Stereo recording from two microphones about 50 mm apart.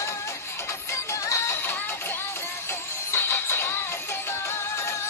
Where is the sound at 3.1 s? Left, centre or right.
Left.